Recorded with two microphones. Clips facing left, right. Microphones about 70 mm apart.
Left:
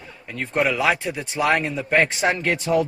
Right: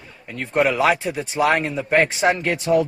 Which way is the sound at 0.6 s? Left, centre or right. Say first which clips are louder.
Right 2 dB; right.